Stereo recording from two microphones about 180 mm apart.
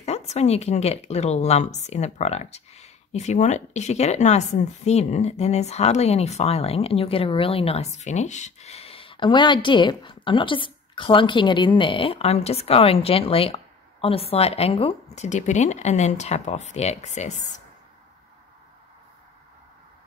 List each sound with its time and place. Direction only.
0.0 s speech: 35° left (ahead or behind)